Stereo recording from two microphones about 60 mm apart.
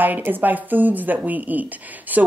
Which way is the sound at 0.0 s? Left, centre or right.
Right.